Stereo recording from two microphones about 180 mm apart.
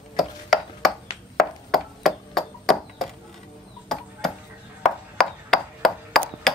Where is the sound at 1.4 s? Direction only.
Centre (ahead or behind).